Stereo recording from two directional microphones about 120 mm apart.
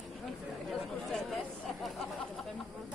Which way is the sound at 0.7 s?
Centre (ahead or behind).